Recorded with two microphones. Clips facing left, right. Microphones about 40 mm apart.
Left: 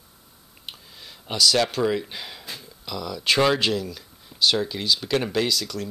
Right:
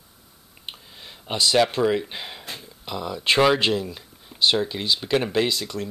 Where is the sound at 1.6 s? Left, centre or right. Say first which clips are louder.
Right 3 dB; centre.